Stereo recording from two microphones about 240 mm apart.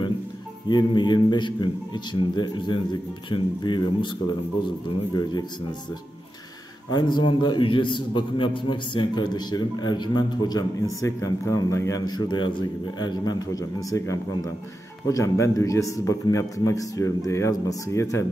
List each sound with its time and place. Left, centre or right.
0.7 s a man's voice: centre
6.9 s a man's voice: centre